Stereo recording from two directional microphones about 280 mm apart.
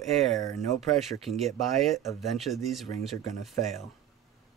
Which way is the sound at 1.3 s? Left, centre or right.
Centre.